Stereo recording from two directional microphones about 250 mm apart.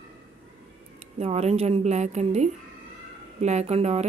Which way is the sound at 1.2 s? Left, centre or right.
Right.